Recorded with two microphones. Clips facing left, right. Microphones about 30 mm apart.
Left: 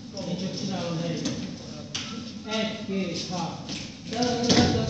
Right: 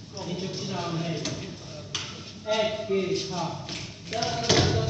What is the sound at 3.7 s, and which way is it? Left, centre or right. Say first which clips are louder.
Speech: left 1 dB; right.